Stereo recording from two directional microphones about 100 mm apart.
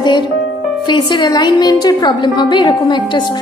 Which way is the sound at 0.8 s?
50° left (ahead or behind).